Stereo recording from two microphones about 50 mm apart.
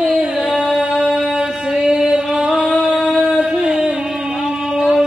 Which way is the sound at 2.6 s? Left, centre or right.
Right.